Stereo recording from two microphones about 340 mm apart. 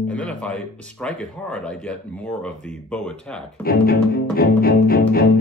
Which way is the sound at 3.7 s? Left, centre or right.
Left.